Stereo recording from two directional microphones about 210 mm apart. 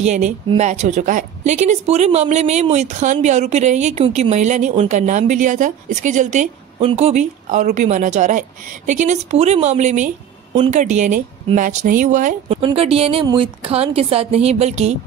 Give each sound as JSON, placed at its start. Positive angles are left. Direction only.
{"t": 0.0, "sound": "a woman's voice", "side_deg": -35}
{"t": 12.5, "sound": "a woman's voice", "side_deg": -25}